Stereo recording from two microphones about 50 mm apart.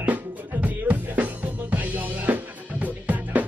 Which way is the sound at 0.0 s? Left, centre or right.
Right.